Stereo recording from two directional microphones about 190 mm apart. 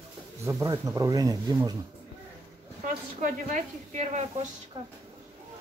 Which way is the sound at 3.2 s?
40° right (ahead or behind).